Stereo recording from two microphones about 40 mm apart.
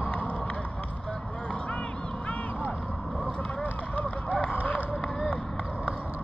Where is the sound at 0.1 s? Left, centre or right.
Left.